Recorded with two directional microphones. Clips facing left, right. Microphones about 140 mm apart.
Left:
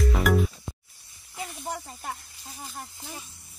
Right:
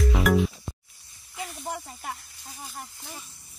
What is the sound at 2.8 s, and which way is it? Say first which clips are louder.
Speech: left 2 dB; 10° left (ahead or behind).